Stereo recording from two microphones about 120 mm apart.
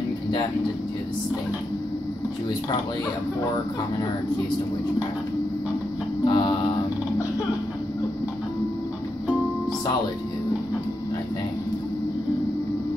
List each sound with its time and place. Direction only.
6.2 s mantra: 35° left (ahead or behind)